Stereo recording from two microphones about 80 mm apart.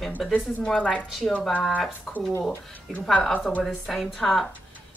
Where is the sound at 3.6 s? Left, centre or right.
Centre.